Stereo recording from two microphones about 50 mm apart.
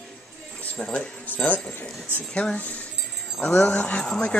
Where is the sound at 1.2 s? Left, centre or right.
Left.